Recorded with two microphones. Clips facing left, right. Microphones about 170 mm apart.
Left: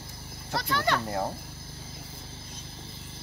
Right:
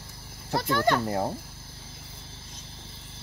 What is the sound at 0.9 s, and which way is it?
Speech, 15° right (ahead or behind).